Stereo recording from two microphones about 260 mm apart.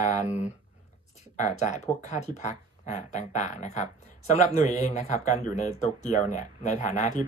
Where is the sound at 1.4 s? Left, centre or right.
Left.